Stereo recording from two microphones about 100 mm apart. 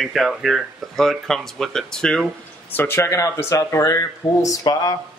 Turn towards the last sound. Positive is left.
turn(degrees=40)  # may be behind; listen again after turning